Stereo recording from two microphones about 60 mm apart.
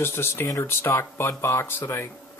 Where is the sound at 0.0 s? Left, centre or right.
Left.